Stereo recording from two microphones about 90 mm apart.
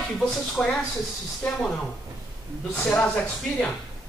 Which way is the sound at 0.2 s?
10° left (ahead or behind).